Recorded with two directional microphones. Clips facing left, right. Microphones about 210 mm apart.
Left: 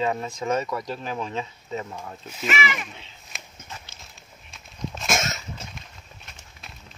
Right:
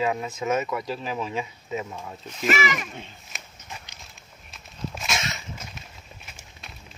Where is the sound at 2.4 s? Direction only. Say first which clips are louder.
Right 3 dB; 40° right (ahead or behind).